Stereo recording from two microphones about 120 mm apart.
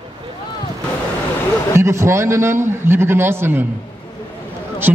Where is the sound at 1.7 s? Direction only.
25° right (ahead or behind).